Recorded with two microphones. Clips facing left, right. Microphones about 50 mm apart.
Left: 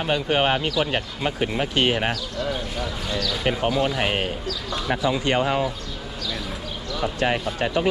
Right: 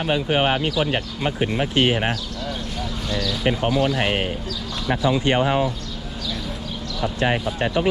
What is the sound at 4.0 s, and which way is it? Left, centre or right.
Speech, centre.